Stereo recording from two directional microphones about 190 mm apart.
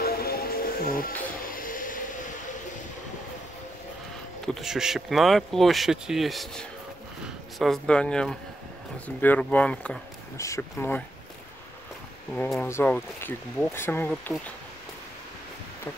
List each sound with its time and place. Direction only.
0.0 s music: 55° left (ahead or behind)
4.5 s speech: centre (ahead or behind)
12.4 s speech: 10° left (ahead or behind)